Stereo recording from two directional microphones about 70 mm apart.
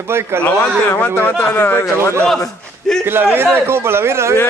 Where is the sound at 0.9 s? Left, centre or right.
Left.